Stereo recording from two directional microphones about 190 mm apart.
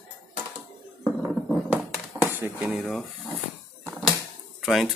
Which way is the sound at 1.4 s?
10° right (ahead or behind).